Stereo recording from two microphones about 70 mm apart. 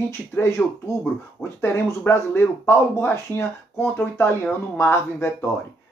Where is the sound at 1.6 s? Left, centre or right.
Left.